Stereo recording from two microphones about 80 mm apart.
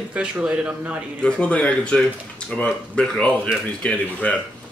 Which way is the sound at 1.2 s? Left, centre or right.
Centre.